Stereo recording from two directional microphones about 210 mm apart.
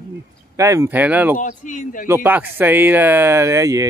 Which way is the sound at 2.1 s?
10° right (ahead or behind).